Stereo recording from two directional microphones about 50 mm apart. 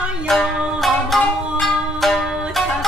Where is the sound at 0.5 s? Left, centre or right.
Centre.